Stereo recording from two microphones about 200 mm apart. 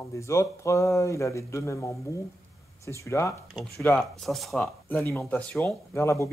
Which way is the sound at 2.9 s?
15° left (ahead or behind).